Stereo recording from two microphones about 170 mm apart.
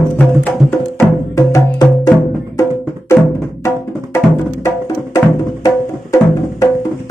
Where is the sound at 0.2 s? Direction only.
10° left (ahead or behind).